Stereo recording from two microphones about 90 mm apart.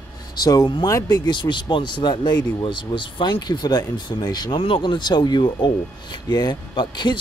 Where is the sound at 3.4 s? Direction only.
50° left (ahead or behind).